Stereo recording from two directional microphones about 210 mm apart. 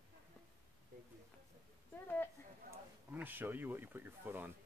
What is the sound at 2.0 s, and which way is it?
Speech, 10° left (ahead or behind).